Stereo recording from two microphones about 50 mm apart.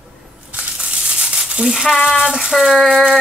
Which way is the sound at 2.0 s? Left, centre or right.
Centre.